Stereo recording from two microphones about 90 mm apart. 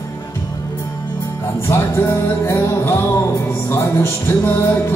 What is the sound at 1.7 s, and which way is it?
Music, 30° left (ahead or behind).